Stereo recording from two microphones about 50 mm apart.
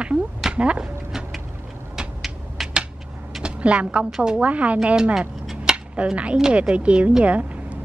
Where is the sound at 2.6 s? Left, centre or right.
Centre.